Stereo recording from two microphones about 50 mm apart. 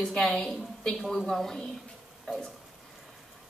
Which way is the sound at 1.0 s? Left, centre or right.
Centre.